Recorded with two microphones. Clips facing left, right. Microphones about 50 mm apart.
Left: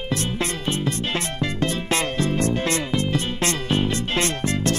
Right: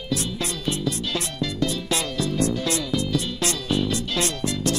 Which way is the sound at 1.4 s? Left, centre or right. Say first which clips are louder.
Left 1 dB; left.